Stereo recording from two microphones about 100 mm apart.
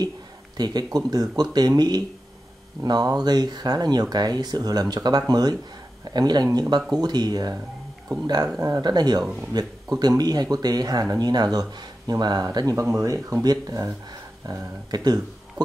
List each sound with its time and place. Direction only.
0.6 s speech: 40° right (ahead or behind)